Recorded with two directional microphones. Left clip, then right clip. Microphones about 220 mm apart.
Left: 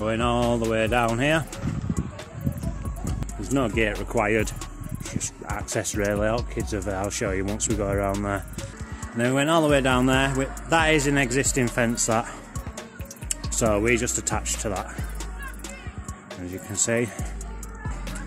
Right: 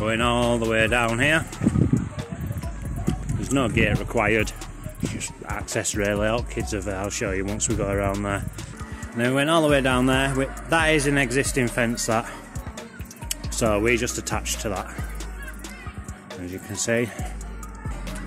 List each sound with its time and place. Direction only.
0.0 s speech: 5° left (ahead or behind)
2.6 s music: centre (ahead or behind)
5.0 s speech: centre (ahead or behind)
16.4 s speech: 5° left (ahead or behind)